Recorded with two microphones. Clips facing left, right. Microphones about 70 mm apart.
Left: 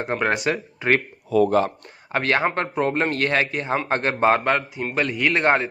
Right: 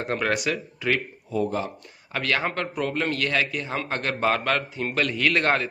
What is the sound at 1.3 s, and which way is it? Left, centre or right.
Speech, left.